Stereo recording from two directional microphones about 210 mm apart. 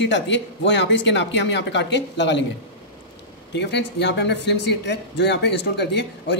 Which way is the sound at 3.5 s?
55° left (ahead or behind).